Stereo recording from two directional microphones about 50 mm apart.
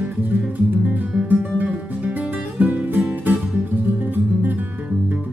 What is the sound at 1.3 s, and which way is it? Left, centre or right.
Guitar, right.